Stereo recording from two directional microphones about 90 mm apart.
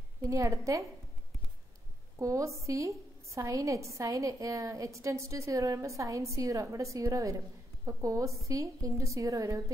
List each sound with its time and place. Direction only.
0.2 s a woman's voice: 35° right (ahead or behind)
2.1 s a woman's voice: 35° right (ahead or behind)